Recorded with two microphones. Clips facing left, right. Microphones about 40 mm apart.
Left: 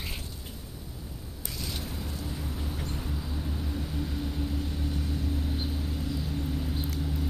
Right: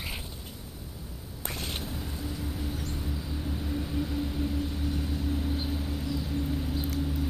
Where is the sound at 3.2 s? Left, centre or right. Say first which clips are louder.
Right 1 dB; centre.